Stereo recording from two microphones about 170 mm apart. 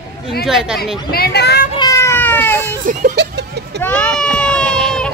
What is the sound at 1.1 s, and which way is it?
Speech, 70° left (ahead or behind).